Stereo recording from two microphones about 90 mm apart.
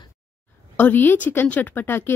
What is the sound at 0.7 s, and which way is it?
Speech, 20° left (ahead or behind).